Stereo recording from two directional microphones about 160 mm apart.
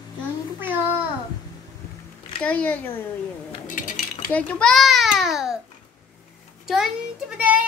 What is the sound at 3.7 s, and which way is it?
Cutlery, 55° left (ahead or behind).